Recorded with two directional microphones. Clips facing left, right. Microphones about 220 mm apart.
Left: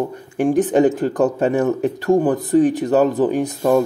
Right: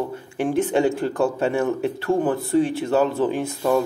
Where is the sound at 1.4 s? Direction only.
40° left (ahead or behind).